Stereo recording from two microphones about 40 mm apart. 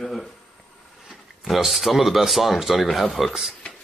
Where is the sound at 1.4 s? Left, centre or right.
Centre.